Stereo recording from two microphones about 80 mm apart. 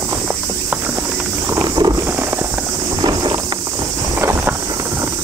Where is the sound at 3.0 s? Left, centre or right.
Right.